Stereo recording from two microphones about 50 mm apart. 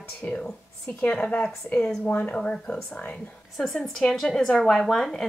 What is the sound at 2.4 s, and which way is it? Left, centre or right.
Speech, left.